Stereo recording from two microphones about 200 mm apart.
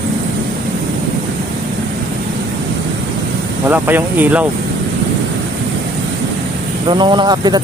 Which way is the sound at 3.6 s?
10° right (ahead or behind).